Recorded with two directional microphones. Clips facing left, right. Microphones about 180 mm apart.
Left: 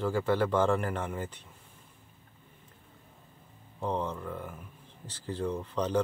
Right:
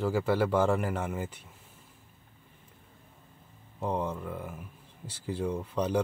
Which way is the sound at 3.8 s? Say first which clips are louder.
Right 1 dB; 10° right (ahead or behind).